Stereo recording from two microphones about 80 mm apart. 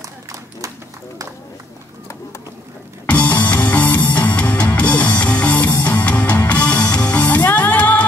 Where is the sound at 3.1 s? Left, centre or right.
Centre.